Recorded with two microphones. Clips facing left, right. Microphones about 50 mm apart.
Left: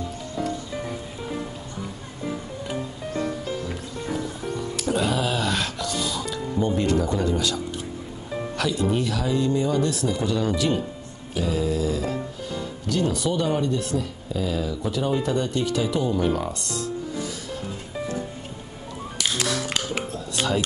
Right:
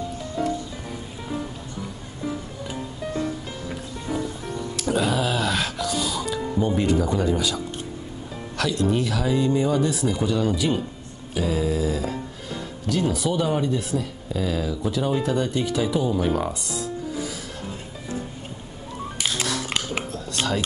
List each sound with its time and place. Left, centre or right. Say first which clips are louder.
4.7 s music: right 2 dB; centre
8.5 s speech: right 2 dB; centre
19.1 s music: left 2 dB; right
20.1 s a sound: left 1 dB; centre